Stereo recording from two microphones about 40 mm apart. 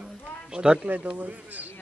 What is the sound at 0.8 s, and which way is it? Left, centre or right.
Speech, right.